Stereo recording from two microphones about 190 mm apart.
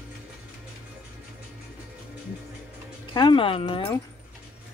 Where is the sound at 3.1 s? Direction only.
25° left (ahead or behind).